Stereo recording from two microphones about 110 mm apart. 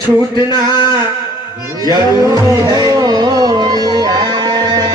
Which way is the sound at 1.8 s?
35° right (ahead or behind).